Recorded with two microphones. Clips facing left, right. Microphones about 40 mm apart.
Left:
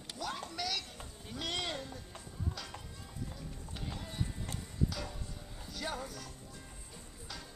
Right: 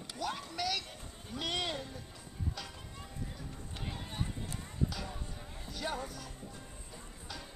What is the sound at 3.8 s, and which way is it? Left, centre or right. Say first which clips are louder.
Music: even; right.